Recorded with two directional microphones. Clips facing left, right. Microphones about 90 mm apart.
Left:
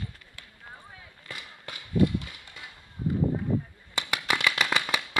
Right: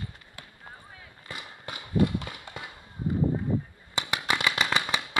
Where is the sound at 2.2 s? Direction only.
50° right (ahead or behind).